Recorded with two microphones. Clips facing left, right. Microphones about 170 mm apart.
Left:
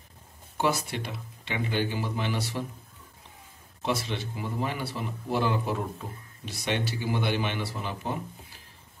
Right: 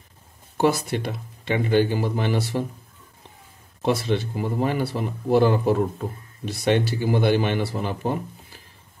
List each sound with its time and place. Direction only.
0.6 s speech: 45° right (ahead or behind)
3.8 s speech: 50° right (ahead or behind)